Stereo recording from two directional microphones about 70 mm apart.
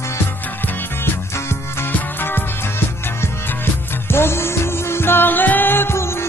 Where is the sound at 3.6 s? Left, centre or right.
Left.